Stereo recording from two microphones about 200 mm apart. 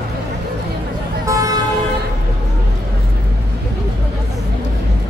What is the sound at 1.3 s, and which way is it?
Toot, 15° right (ahead or behind).